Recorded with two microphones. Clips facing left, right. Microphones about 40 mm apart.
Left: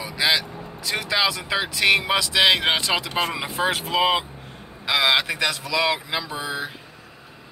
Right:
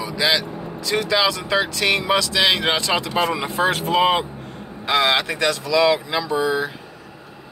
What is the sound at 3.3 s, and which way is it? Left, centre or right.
Speech, centre.